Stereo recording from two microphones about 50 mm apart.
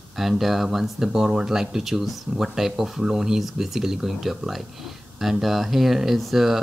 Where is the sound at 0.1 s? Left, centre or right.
Centre.